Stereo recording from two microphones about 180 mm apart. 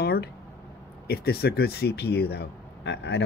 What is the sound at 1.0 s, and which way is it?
Speech, 60° left (ahead or behind).